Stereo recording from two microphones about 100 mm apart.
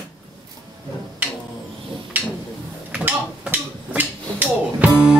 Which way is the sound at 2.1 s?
15° right (ahead or behind).